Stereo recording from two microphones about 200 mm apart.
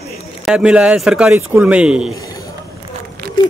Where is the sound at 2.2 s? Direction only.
15° left (ahead or behind).